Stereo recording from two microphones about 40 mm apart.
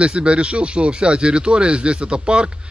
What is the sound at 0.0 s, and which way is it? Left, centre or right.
Speech, right.